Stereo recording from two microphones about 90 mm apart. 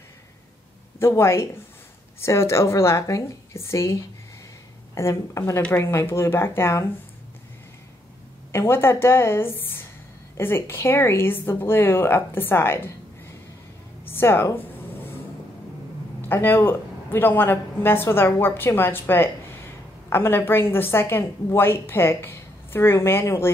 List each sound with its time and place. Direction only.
0.9 s a woman's voice: 30° left (ahead or behind)
8.5 s a woman's voice: 25° left (ahead or behind)
14.0 s a sound: 25° left (ahead or behind)
16.2 s a woman's voice: 25° left (ahead or behind)